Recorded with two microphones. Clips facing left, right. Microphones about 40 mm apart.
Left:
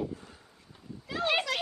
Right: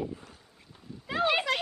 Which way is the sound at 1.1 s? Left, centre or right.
Right.